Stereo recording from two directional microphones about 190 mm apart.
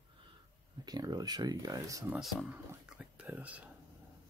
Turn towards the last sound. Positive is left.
turn(degrees=-5)  # may be behind; listen again after turning